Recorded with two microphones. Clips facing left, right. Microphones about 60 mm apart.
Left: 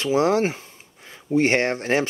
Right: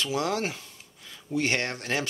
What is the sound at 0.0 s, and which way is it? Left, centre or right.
Speech, left.